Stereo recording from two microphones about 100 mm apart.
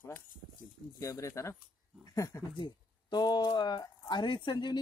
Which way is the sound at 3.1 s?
45° left (ahead or behind).